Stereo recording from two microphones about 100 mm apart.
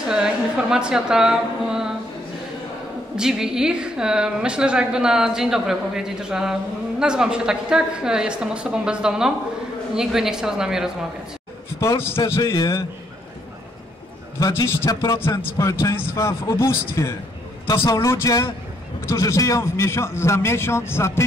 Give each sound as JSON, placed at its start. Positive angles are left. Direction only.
{"t": 0.1, "sound": "a woman's voice", "side_deg": -5}
{"t": 3.2, "sound": "a woman's voice", "side_deg": -5}
{"t": 11.8, "sound": "a man's voice", "side_deg": 30}
{"t": 14.9, "sound": "a man's voice", "side_deg": 35}
{"t": 15.1, "sound": "a man's voice", "side_deg": 25}